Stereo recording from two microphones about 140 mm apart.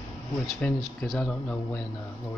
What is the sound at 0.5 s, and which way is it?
Speech, 5° left (ahead or behind).